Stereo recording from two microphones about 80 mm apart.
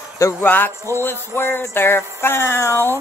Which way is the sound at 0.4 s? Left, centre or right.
Left.